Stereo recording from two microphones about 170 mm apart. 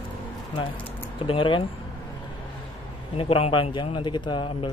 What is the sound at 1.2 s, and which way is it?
Speech, 30° left (ahead or behind).